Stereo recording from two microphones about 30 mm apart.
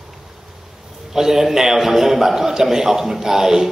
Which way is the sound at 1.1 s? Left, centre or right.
Centre.